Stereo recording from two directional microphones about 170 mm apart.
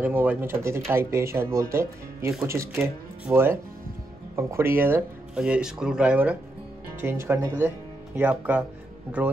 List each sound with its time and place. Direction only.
0.0 s speech: 10° right (ahead or behind)